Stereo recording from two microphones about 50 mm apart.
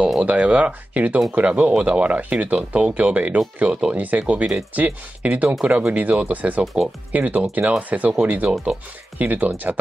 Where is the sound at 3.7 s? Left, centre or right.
Centre.